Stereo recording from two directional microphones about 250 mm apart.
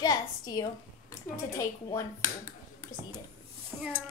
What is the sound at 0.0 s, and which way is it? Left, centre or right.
A woman's voice, centre.